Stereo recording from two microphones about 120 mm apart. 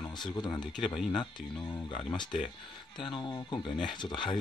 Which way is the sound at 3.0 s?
40° left (ahead or behind).